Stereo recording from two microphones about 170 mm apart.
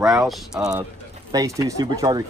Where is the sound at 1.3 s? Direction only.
20° right (ahead or behind).